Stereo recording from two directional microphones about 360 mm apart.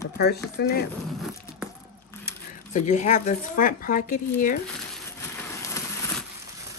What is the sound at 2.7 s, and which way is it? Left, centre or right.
Speech, centre.